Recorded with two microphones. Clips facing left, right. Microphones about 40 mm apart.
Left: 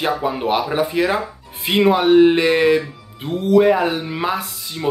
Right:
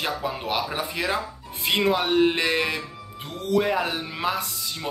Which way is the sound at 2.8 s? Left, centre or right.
Left.